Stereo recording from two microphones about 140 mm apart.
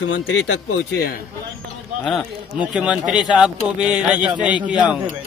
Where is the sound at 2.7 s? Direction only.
5° right (ahead or behind).